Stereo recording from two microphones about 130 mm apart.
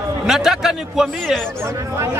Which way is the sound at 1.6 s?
20° right (ahead or behind).